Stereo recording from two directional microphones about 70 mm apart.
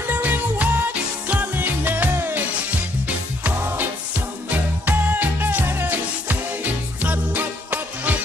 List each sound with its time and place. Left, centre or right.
0.0 s music: right
4.8 s music: right